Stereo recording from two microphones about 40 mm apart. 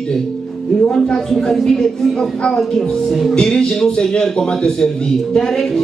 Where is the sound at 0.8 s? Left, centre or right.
Centre.